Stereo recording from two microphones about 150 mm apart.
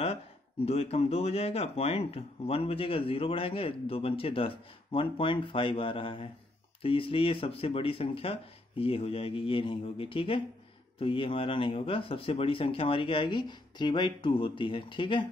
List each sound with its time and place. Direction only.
0.7 s speech: 40° left (ahead or behind)